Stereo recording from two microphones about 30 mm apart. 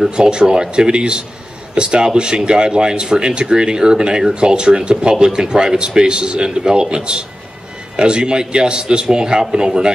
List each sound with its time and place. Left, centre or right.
0.1 s speech: right